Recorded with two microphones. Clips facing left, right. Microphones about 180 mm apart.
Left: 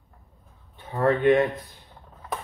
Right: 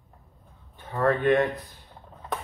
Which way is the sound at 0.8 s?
20° left (ahead or behind).